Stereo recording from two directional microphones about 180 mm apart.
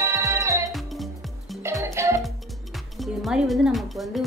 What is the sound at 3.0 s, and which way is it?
Speech, centre (ahead or behind).